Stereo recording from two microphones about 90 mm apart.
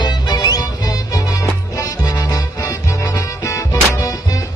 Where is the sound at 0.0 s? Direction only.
50° left (ahead or behind).